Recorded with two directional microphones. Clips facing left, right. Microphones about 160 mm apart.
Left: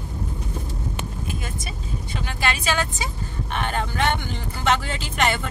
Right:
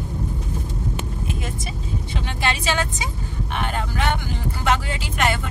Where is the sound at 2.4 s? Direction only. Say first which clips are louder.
Right 1 dB; 25° right (ahead or behind).